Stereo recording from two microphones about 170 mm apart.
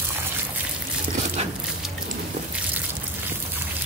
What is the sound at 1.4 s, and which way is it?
Music, 40° right (ahead or behind).